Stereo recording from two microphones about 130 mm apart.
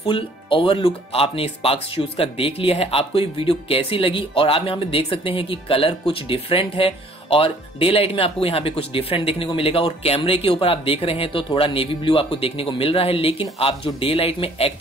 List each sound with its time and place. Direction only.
0.0 s speech: 45° left (ahead or behind)